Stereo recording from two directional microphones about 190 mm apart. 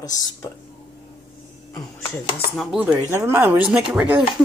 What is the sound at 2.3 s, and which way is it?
A woman's voice, centre (ahead or behind).